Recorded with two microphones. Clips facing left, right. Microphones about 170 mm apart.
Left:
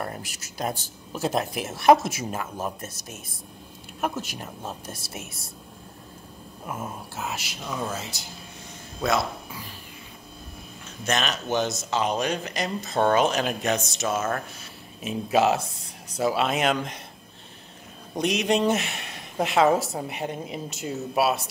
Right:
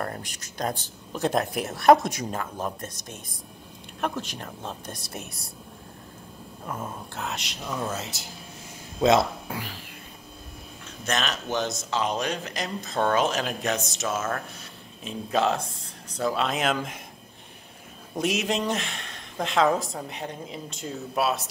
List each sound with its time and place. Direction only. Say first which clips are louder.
0.2 s speech: even; 5° left (ahead or behind)
6.6 s speech: even; 5° left (ahead or behind)
9.0 s speech: right 6 dB; 20° right (ahead or behind)
9.5 s a sound: right 5 dB; 80° right
11.1 s a woman's voice: left 2 dB; centre (ahead or behind)
18.1 s speech: left 3 dB; 5° right (ahead or behind)
18.7 s a woman's voice: left 4 dB; 5° left (ahead or behind)